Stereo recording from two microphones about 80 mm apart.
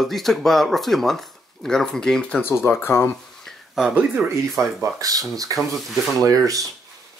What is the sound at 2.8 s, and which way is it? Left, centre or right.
Speech, left.